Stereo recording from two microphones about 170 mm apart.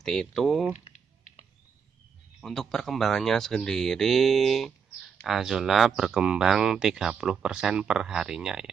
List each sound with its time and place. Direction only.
0.0 s speech: centre (ahead or behind)
0.7 s typing: 45° left (ahead or behind)
2.4 s speech: centre (ahead or behind)